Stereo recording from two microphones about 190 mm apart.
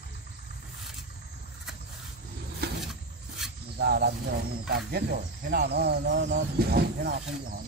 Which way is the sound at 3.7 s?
60° right (ahead or behind).